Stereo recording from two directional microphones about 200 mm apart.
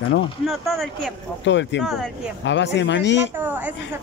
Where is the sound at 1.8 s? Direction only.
Centre (ahead or behind).